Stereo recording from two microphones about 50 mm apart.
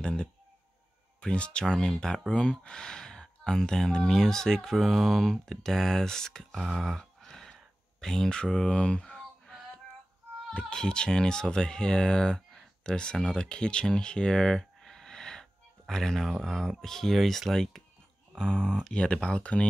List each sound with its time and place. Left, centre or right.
0.0 s speech: centre
7.0 s a sound: centre
10.7 s speech: centre